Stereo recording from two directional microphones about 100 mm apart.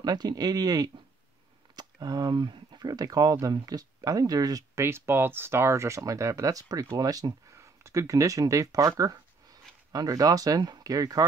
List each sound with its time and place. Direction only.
0.0 s speech: 45° right (ahead or behind)